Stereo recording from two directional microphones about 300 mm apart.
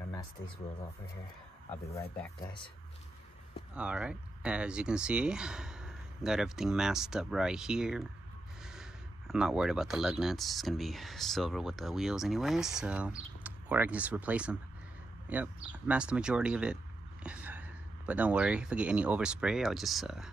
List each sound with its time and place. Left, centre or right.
1.9 s speech: centre
3.7 s speech: centre
9.3 s speech: centre